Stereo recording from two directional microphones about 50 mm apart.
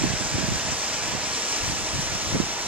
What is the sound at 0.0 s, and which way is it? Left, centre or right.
Waves, right.